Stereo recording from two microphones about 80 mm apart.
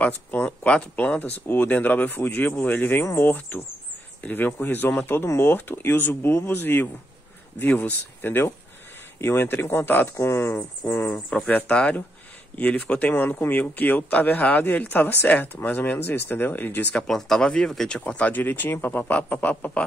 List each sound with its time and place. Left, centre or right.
0.0 s speech: centre; by 10.5 s left
10.9 s speech: left
16.9 s speech: centre